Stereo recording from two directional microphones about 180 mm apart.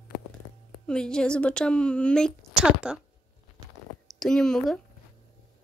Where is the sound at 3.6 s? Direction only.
25° right (ahead or behind).